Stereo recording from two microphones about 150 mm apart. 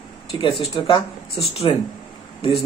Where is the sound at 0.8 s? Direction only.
35° left (ahead or behind).